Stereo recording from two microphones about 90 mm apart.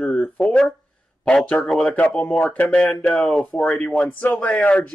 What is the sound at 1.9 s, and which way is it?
Speech, 15° left (ahead or behind).